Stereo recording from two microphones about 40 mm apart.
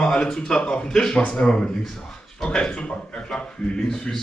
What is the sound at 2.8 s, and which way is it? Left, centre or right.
Speech, left.